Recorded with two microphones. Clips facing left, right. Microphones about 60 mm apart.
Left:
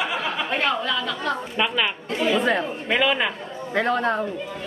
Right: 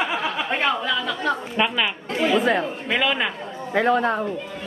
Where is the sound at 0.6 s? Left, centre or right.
Centre.